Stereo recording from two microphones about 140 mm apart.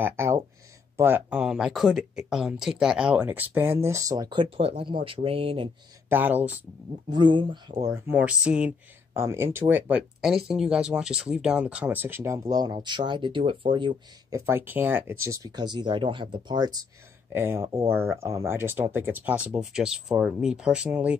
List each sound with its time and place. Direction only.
0.0 s speech: 20° right (ahead or behind); by 5.7 s 40° right (ahead or behind)
6.0 s speech: 15° right (ahead or behind)
7.1 s speech: 35° right (ahead or behind)
8.1 s speech: 10° right (ahead or behind)
9.1 s speech: 20° right (ahead or behind); by 13.9 s 35° right (ahead or behind)
14.3 s speech: 20° right (ahead or behind)
17.3 s speech: 15° right (ahead or behind)